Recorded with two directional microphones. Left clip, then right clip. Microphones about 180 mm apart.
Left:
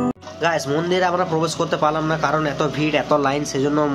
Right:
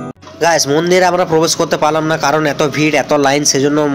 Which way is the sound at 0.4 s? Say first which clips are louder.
Right 9 dB; 20° right (ahead or behind).